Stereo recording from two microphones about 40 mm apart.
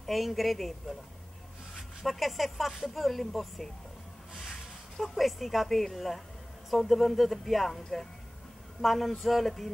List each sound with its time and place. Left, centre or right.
0.0 s speech: centre
2.0 s speech: centre
4.9 s speech: centre